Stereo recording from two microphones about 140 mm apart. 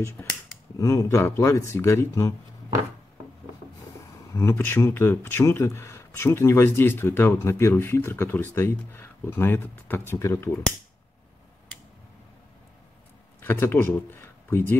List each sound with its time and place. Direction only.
0.2 s speech: 10° left (ahead or behind)
0.7 s speech: 20° left (ahead or behind)
4.3 s speech: 20° left (ahead or behind)
13.4 s speech: 15° left (ahead or behind)